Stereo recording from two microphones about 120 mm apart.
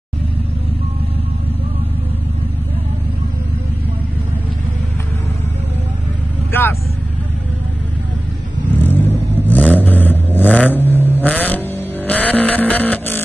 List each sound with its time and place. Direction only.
6.5 s vehicle: 20° left (ahead or behind)
8.8 s vehicle: 15° left (ahead or behind)